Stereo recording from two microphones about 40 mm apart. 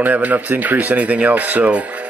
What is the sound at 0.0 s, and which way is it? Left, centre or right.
Speech, right.